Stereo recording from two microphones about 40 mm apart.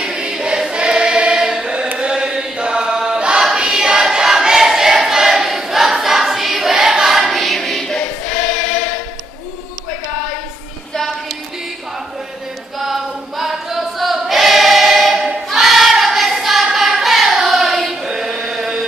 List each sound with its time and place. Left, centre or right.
0.0 s choir: centre
1.4 s chant: centre
2.0 s chant: centre
3.3 s choir: centre
7.3 s choir: centre
12.7 s choir: centre
16.7 s child singing: centre
17.4 s choir: centre